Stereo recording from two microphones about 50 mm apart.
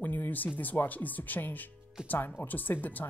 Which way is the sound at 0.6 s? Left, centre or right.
Left.